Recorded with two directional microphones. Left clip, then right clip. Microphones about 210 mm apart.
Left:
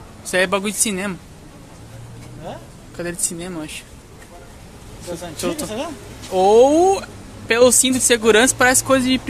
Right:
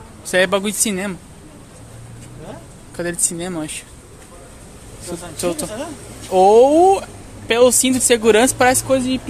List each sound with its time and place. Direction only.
0.3 s speech: 10° right (ahead or behind)
3.0 s speech: 15° right (ahead or behind)
5.4 s speech: 10° right (ahead or behind)
8.8 s speech: 10° left (ahead or behind)